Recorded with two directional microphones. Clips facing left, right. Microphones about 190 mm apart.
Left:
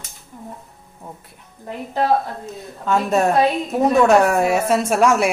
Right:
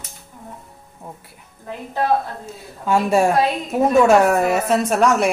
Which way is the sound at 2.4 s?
10° right (ahead or behind).